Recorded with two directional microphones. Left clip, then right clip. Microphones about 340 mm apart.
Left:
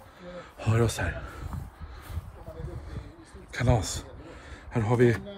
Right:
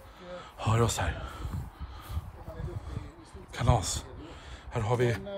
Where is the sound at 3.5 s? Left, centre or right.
Right.